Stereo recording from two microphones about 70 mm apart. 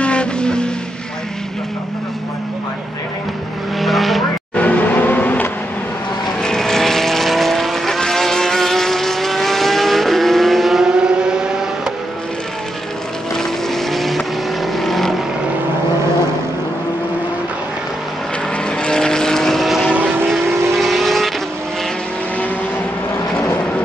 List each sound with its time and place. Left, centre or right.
0.0 s vehicle: centre
3.8 s vehicle: centre
4.6 s vehicle: left
6.4 s vehicle: centre
13.4 s vehicle: centre
18.8 s vehicle: centre